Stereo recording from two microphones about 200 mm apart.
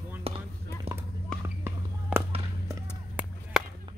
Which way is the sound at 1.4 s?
10° right (ahead or behind).